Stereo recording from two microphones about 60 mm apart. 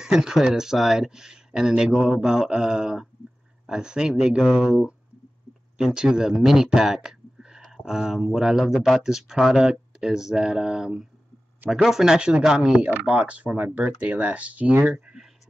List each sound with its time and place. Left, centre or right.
0.0 s speech: centre
12.7 s speech: right
14.9 s speech: centre